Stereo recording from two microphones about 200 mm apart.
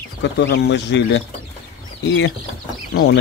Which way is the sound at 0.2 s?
60° left (ahead or behind).